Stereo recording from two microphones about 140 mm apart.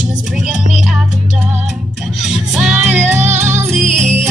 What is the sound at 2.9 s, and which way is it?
Music, 55° right (ahead or behind).